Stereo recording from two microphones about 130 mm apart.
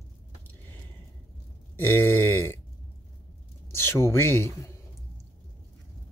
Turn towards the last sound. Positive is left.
turn(degrees=20)  # may be behind; listen again after turning